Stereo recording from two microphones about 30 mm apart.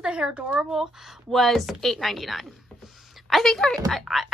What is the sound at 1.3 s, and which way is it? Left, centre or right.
Speech, centre.